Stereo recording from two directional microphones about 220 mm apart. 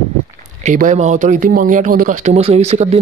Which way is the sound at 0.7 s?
35° right (ahead or behind).